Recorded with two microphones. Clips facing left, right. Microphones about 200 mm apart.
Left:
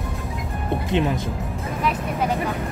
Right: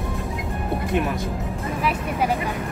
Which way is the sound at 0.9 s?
25° left (ahead or behind).